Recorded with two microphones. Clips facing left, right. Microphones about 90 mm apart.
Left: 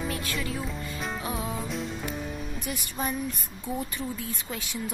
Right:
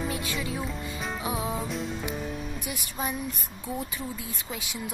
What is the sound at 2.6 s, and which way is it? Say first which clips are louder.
A woman's voice: left 3 dB; 5° right (ahead or behind).